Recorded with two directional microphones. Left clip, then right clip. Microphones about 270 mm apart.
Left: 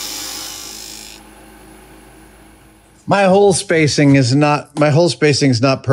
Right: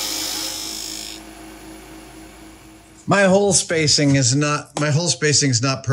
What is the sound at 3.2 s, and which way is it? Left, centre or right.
Speech, left.